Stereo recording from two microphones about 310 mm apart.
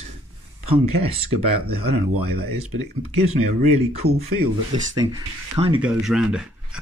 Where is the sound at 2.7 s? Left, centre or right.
Right.